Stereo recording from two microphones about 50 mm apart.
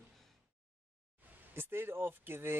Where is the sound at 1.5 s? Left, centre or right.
Right.